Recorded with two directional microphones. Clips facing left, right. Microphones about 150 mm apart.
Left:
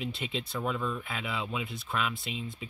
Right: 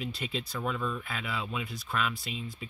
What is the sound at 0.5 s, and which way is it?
Speech, 10° left (ahead or behind).